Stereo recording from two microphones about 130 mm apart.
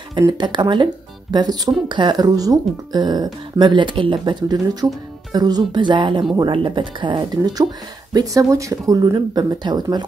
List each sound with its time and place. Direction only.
0.4 s speech: 35° right (ahead or behind)